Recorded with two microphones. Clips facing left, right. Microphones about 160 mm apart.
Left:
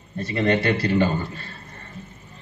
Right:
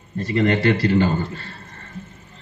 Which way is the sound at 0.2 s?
40° right (ahead or behind).